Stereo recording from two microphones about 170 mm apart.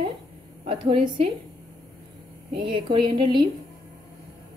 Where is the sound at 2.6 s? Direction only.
30° right (ahead or behind).